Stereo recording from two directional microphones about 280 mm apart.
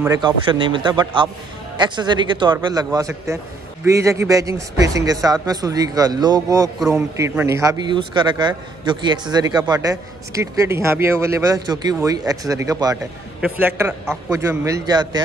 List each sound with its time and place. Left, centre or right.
0.0 s a man's voice: centre